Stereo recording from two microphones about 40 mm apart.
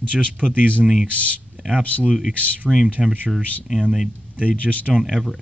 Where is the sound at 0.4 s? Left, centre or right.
Left.